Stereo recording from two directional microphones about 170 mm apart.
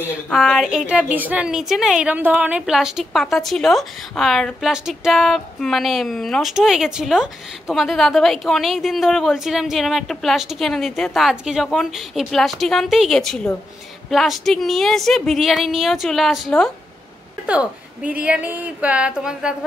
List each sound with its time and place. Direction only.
0.3 s a woman's voice: centre (ahead or behind)